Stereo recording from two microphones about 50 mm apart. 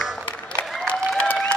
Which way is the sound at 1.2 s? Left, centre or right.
Left.